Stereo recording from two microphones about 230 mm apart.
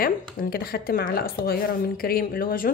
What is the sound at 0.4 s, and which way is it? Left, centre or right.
A woman's voice, left.